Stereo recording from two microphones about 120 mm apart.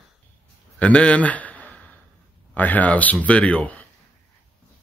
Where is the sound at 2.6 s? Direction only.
15° left (ahead or behind).